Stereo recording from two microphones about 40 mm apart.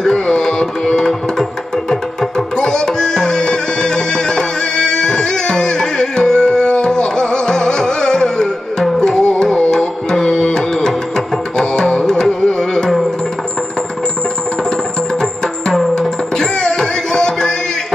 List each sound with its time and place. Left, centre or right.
0.0 s music: centre
15.9 s music: centre